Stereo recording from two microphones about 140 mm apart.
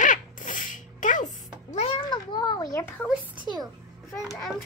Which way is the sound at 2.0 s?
30° left (ahead or behind).